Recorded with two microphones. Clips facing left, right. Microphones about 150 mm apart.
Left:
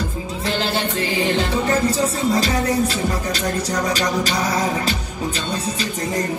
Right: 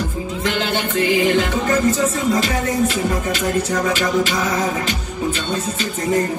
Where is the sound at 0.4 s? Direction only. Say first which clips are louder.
Even; 35° left (ahead or behind).